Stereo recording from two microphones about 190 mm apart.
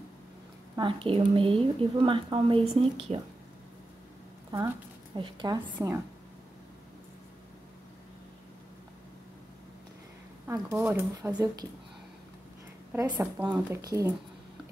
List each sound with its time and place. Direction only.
0.7 s a woman's voice: 25° right (ahead or behind)
4.5 s speech: 20° right (ahead or behind)
10.4 s speech: 15° right (ahead or behind)
12.9 s speech: 15° right (ahead or behind)